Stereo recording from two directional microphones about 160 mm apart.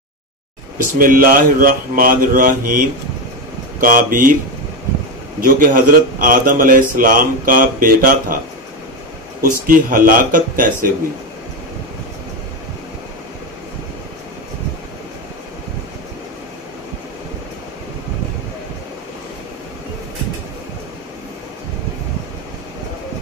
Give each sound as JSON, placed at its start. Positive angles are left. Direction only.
{"t": 0.9, "sound": "a man's voice", "side_deg": -60}
{"t": 5.4, "sound": "a man's voice", "side_deg": -60}
{"t": 9.4, "sound": "a man's voice", "side_deg": -60}